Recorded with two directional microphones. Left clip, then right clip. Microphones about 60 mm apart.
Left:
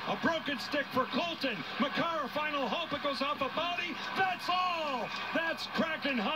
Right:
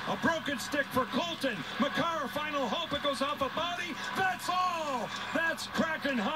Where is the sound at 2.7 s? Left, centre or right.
Right.